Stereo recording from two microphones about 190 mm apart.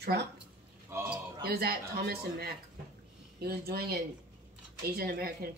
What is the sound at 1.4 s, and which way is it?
Speech, 55° right (ahead or behind).